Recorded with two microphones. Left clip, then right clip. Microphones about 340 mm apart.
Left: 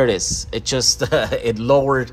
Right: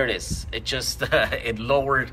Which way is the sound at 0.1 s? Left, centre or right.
Centre.